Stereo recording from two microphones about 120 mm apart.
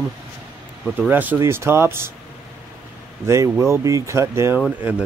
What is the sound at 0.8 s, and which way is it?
Speech, 15° right (ahead or behind).